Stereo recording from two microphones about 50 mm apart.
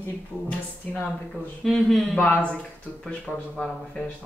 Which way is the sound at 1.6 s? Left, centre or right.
Centre.